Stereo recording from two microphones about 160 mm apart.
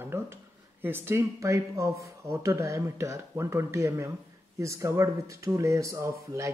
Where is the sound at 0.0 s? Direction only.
15° right (ahead or behind).